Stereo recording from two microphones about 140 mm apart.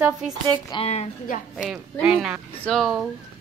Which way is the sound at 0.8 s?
50° left (ahead or behind).